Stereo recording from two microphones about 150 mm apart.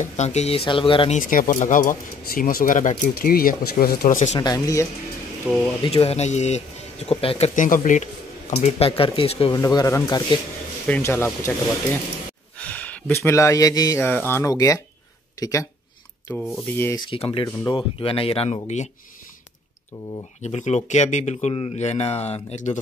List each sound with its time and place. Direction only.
0.0 s speech: 50° left (ahead or behind)
1.1 s speech: 65° left (ahead or behind); by 4.2 s 85° left
4.4 s speech: 25° left (ahead or behind)
5.5 s speech: 10° left (ahead or behind)
5.8 s speech: 40° left (ahead or behind)
9.6 s speech: 25° left (ahead or behind)
12.5 s speech: 10° left (ahead or behind)
16.3 s speech: centre (ahead or behind)
16.9 s speech: 35° left (ahead or behind)
20.4 s speech: 50° left (ahead or behind)